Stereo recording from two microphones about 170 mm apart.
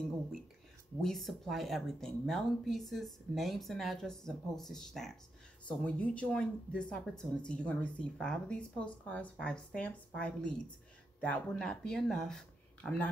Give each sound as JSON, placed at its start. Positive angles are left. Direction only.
{"t": 1.0, "sound": "speech", "side_deg": 0}